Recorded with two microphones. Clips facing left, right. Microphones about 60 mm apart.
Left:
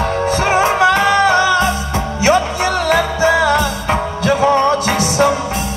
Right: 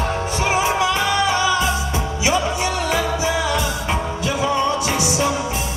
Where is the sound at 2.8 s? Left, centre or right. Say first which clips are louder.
Left 8 dB; left.